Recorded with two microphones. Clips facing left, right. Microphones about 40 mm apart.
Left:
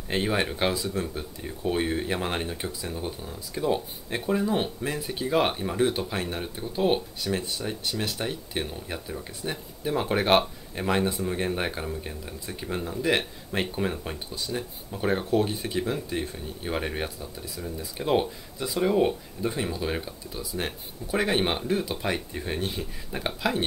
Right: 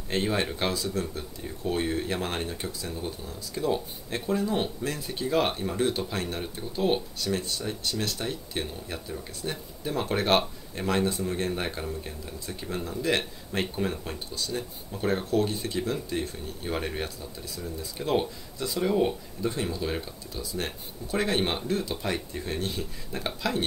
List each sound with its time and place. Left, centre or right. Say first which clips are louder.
0.1 s speech: left 1 dB; centre